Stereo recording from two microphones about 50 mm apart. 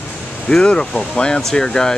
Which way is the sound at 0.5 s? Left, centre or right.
Centre.